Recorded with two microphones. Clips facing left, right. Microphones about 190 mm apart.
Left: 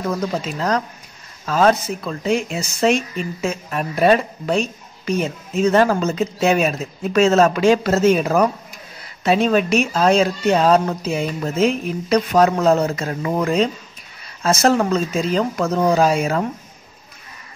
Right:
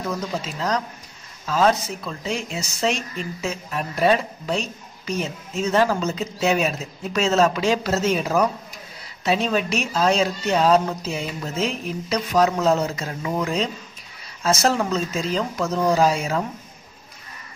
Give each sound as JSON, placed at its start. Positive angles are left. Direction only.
{"t": 1.4, "sound": "speech", "side_deg": 55}